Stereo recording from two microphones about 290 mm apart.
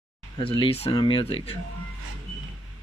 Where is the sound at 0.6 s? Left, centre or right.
Centre.